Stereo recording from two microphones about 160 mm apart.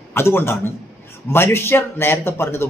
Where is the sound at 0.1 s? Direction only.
15° left (ahead or behind).